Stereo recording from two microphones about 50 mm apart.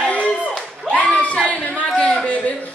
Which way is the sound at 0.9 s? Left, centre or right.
Left.